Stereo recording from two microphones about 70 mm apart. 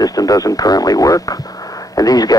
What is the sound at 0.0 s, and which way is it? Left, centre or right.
Speech, left.